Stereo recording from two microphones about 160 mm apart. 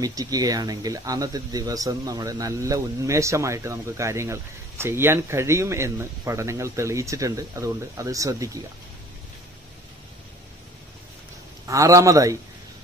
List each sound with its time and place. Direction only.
0.0 s speech: 25° right (ahead or behind)
11.6 s speech: 20° right (ahead or behind)